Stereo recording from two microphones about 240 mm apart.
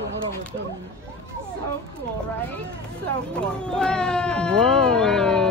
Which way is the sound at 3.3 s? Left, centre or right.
Centre.